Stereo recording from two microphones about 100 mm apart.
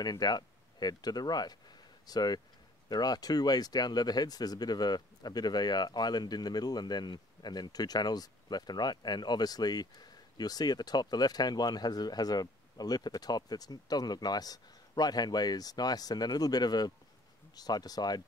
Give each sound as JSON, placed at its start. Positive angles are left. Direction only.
{"t": 0.0, "sound": "speech", "side_deg": 45}